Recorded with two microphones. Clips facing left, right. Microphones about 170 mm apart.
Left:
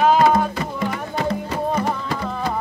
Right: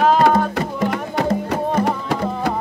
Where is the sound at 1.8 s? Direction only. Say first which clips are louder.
Right 4 dB; 75° right (ahead or behind).